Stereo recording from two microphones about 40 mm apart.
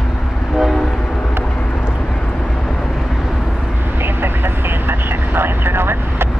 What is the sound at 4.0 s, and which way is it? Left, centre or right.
Vehicle, right.